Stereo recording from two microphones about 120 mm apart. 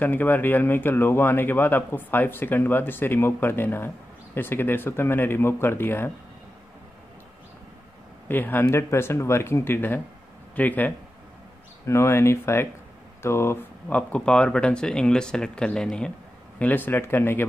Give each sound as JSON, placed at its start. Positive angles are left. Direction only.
{"t": 0.0, "sound": "speech", "side_deg": 15}
{"t": 8.3, "sound": "speech", "side_deg": 15}